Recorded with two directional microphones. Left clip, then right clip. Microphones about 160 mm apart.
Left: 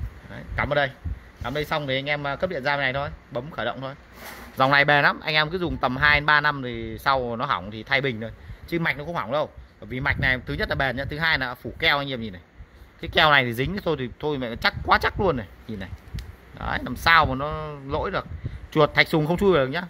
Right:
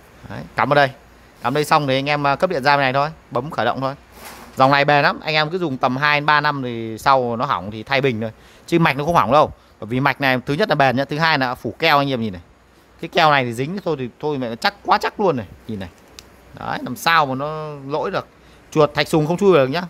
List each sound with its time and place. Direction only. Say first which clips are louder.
0.3 s a sound: right 8 dB; 40° right (ahead or behind)
1.4 s speech: right 10 dB; 40° right (ahead or behind)
4.6 s speech: right 4 dB; 20° right (ahead or behind)
13.0 s speech: right 3 dB; 20° right (ahead or behind)